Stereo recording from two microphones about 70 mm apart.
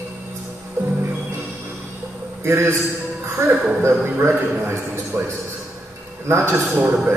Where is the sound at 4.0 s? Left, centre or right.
Right.